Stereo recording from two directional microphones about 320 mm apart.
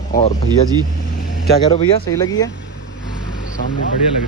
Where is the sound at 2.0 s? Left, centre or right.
Centre.